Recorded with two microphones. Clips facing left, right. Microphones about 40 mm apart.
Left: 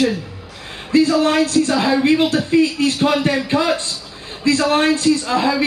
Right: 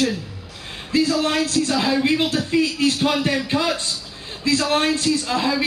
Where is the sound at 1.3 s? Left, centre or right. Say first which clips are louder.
Left 5 dB; centre.